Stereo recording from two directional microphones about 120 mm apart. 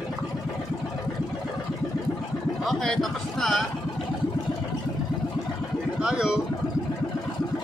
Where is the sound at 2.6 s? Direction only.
Centre (ahead or behind).